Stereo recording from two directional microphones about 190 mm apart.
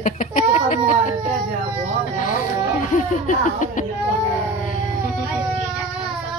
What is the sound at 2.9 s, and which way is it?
Laughter, 40° left (ahead or behind).